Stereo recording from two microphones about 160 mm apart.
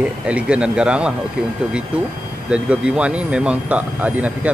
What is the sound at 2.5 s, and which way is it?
Speech, 5° right (ahead or behind).